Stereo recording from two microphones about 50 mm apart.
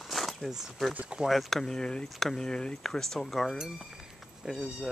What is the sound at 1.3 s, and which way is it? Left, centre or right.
Speech, centre.